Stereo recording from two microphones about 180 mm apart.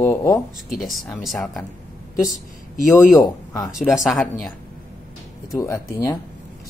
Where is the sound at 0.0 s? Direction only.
15° left (ahead or behind).